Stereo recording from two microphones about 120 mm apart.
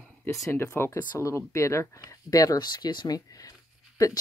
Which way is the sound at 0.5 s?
20° left (ahead or behind).